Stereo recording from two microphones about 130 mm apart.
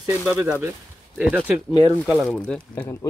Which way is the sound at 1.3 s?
10° right (ahead or behind).